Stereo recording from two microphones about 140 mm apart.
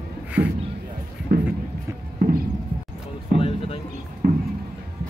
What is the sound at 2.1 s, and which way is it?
Clip-clop, 70° right (ahead or behind).